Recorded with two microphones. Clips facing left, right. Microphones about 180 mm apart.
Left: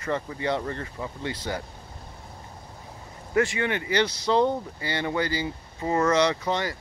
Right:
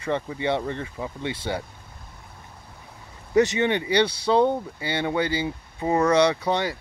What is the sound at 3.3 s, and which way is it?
Speech, 20° right (ahead or behind).